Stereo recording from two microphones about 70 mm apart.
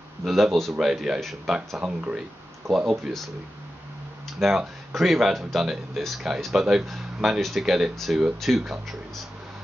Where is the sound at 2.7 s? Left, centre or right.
Centre.